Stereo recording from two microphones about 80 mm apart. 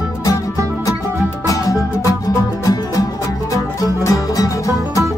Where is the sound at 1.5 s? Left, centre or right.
Left.